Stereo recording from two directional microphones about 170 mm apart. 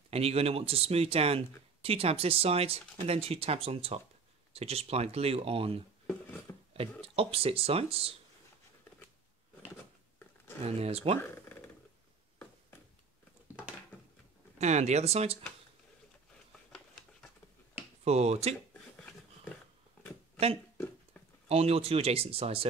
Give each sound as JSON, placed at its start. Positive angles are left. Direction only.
{"t": 0.1, "sound": "speech", "side_deg": -35}
{"t": 6.8, "sound": "speech", "side_deg": -35}
{"t": 10.6, "sound": "speech", "side_deg": -40}
{"t": 11.1, "sound": "a sound", "side_deg": 10}
{"t": 13.5, "sound": "a sound", "side_deg": -10}
{"t": 14.6, "sound": "speech", "side_deg": -40}
{"t": 18.0, "sound": "speech", "side_deg": -40}
{"t": 18.7, "sound": "a sound", "side_deg": 10}
{"t": 21.5, "sound": "speech", "side_deg": -35}